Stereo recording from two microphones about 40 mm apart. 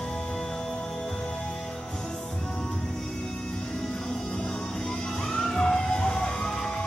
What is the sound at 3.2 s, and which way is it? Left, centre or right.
Music, centre.